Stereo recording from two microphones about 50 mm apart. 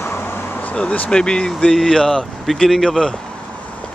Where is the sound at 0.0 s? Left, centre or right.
Left.